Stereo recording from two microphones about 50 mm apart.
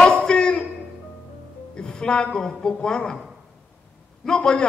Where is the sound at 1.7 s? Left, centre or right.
Centre.